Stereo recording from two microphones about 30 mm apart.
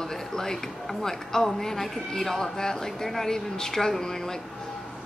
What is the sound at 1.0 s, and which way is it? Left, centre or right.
Speech, centre.